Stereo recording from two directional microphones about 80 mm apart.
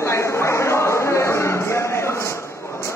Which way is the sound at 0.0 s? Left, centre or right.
Left.